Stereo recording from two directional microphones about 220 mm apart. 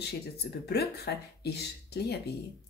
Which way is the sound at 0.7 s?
45° left (ahead or behind).